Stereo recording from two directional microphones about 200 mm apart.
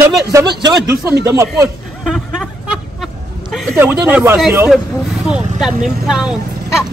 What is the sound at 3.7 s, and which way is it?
Speech, 10° right (ahead or behind).